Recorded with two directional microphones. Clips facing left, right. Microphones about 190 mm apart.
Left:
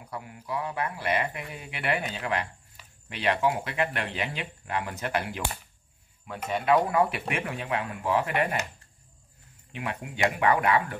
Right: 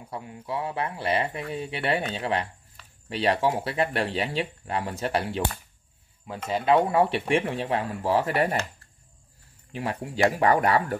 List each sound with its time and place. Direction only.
0.1 s speech: 25° right (ahead or behind)
6.5 s speech: 30° right (ahead or behind)
9.7 s speech: 35° right (ahead or behind)